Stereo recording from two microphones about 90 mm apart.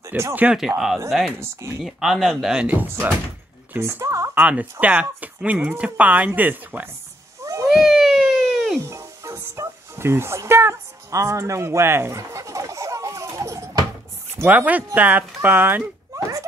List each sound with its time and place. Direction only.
0.3 s speech: 20° right (ahead or behind)
0.6 s speech: 5° right (ahead or behind)
3.7 s speech: 35° right (ahead or behind)
4.4 s speech: 15° right (ahead or behind)
7.4 s a sound: 35° right (ahead or behind)
7.7 s a sound: centre (ahead or behind)
8.8 s music: 30° right (ahead or behind)
14.4 s speech: 20° right (ahead or behind)
16.2 s a sound: 40° right (ahead or behind)